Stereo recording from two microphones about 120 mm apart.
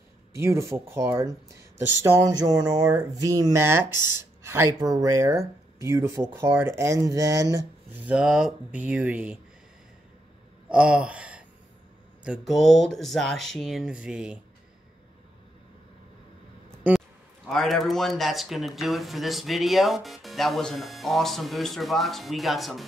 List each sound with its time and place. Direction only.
0.3 s speech: 25° right (ahead or behind)
8.0 s speech: 10° right (ahead or behind)
10.7 s speech: 10° right (ahead or behind)
12.3 s speech: centre (ahead or behind)
17.5 s speech: centre (ahead or behind)